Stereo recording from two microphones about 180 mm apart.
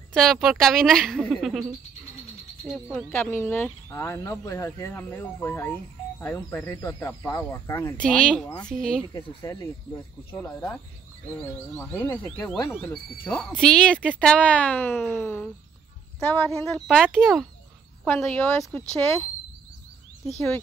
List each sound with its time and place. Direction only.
0.1 s a woman's voice: centre (ahead or behind)
2.9 s a woman's voice: 10° left (ahead or behind)
9.1 s a woman's voice: 20° left (ahead or behind)